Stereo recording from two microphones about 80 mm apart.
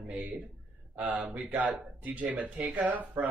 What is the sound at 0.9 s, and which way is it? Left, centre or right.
Speech, centre.